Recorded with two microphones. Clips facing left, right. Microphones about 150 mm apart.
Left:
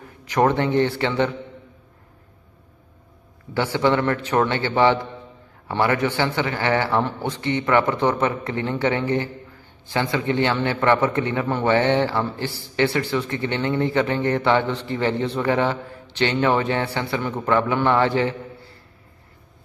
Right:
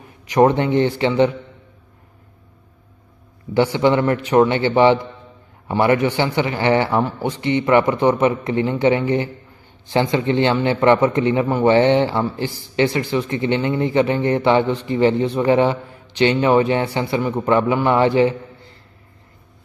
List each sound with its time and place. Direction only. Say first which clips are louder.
0.2 s speech: right 4 dB; 15° right (ahead or behind)
3.5 s a man's voice: right 4 dB; 15° right (ahead or behind)